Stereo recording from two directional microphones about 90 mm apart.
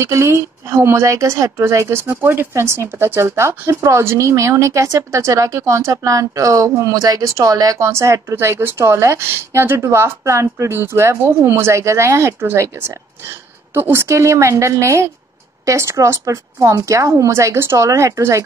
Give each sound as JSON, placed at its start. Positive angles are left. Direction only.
{"t": 0.0, "sound": "a woman's voice", "side_deg": -30}